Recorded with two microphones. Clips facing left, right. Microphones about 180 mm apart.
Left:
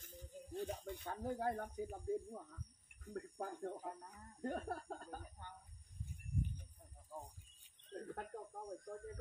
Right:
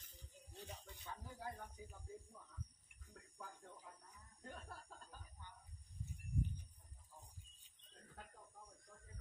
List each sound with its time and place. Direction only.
0.0 s speech: 50° left (ahead or behind)
7.9 s speech: 60° left (ahead or behind)